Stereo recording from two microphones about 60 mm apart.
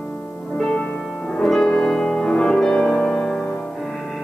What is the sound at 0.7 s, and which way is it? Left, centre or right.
Music, centre.